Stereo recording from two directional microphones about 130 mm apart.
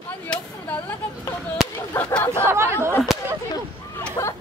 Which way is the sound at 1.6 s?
5° right (ahead or behind).